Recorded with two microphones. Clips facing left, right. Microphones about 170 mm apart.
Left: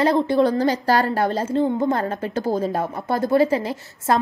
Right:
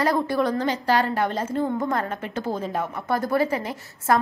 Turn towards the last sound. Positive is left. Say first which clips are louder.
# left 1 dB
turn(degrees=25)  # may be behind; listen again after turning